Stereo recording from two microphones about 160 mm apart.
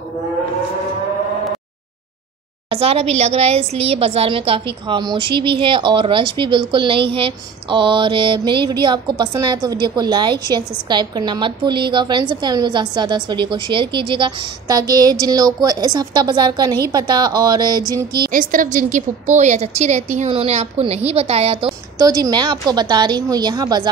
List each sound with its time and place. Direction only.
2.7 s a woman's voice: 35° right (ahead or behind)
18.3 s a woman's voice: 60° right (ahead or behind); by 21.7 s 35° right (ahead or behind)
21.9 s a woman's voice: 20° right (ahead or behind)